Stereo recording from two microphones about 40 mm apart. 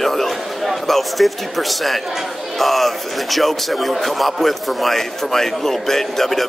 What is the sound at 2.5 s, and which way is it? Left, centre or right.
A man's voice, centre.